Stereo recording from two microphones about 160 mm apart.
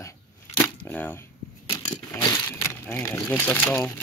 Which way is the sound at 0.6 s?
10° left (ahead or behind).